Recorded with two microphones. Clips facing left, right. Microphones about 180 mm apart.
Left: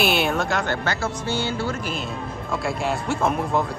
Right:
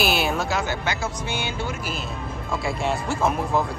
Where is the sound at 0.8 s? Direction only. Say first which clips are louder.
Left 2 dB; 15° right (ahead or behind).